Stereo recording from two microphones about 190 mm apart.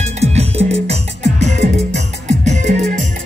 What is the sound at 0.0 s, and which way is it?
Music, 35° right (ahead or behind).